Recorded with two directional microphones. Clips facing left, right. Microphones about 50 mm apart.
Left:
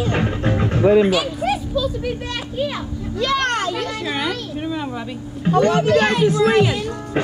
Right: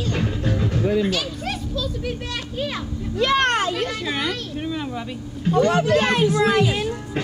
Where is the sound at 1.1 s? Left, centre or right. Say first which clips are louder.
Left 7 dB; centre.